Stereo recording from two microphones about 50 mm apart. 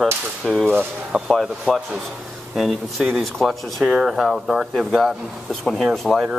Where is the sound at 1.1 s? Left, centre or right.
Centre.